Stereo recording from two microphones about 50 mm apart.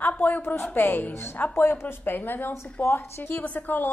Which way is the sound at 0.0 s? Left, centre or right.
Left.